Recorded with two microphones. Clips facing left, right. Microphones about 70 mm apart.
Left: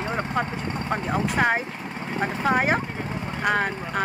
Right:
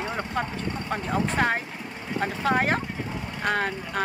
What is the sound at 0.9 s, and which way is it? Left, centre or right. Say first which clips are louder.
Speech: left 2 dB; centre.